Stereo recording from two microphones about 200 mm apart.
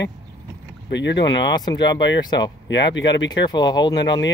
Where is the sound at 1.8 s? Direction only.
60° left (ahead or behind).